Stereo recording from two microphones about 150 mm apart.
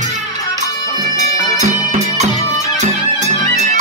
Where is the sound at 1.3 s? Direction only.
25° left (ahead or behind).